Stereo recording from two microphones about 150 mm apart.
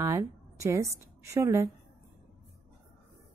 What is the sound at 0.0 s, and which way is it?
A woman's voice, 20° right (ahead or behind).